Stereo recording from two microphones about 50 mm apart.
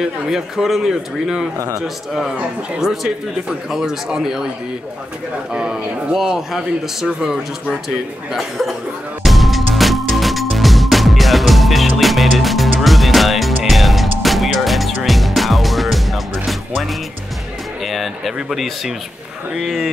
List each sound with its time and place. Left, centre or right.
0.0 s speech: centre
2.8 s speech: centre
5.5 s speech: centre
9.2 s music: centre
17.8 s speech: centre